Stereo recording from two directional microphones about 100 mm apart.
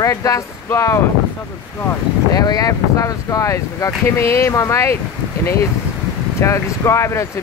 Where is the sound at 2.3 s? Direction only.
40° left (ahead or behind).